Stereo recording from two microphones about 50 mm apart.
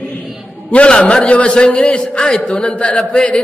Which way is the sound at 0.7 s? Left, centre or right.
Left.